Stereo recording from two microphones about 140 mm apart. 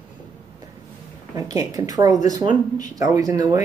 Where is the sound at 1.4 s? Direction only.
25° right (ahead or behind).